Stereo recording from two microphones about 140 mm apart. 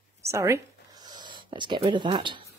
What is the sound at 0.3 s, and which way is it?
Speech, 20° right (ahead or behind).